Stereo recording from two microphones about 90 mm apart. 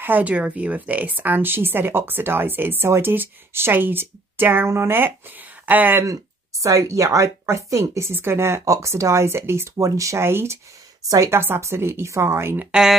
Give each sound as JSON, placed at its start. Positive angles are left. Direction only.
{"t": 0.0, "sound": "speech", "side_deg": -20}
{"t": 6.0, "sound": "speech", "side_deg": -35}